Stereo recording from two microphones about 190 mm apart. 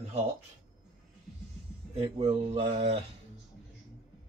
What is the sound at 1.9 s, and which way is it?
Speech, 30° right (ahead or behind).